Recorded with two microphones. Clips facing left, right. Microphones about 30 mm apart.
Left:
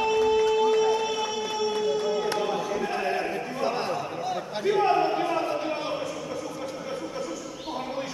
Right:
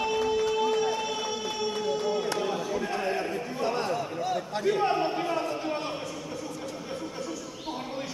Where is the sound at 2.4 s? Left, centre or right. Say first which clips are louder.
Left 2 dB; centre.